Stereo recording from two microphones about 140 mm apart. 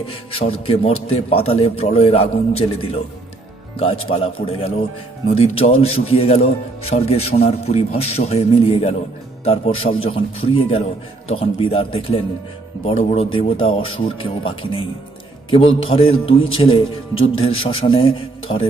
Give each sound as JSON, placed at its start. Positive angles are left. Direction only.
{"t": 0.0, "sound": "a man's voice", "side_deg": 40}